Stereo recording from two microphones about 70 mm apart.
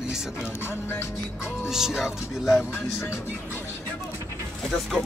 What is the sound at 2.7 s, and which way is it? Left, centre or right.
Music, left.